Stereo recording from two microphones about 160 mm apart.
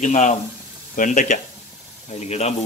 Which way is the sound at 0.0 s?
45° left (ahead or behind).